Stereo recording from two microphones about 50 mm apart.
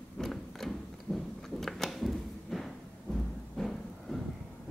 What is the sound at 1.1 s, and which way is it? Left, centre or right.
Chewing, left.